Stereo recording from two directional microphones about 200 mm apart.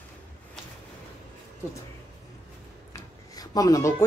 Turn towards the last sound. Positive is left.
turn(degrees=15)  # may be behind; listen again after turning